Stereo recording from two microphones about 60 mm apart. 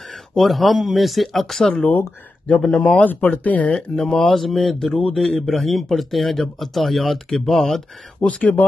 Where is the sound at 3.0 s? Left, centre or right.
Left; by 8.0 s centre.